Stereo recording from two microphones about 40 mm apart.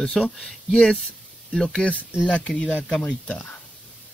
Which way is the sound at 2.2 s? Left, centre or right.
Left.